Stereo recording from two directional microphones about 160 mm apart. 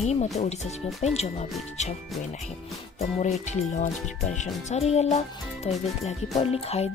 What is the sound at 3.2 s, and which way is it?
Speech, 50° left (ahead or behind).